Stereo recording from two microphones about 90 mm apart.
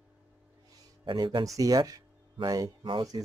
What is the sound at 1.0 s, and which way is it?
Speech, 55° right (ahead or behind).